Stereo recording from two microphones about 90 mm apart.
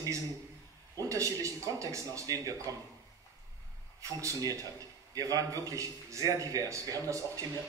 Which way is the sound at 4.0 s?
40° right (ahead or behind).